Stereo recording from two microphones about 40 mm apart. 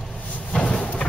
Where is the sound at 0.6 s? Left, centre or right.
Left.